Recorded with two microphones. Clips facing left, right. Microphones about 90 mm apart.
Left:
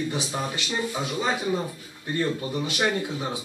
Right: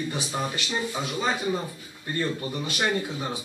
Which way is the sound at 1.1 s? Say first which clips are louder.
Even; 15° left (ahead or behind).